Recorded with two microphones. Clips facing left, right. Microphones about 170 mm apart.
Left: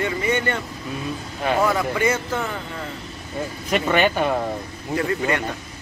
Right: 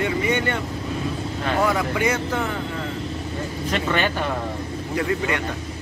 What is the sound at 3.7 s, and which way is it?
Speech, 15° left (ahead or behind).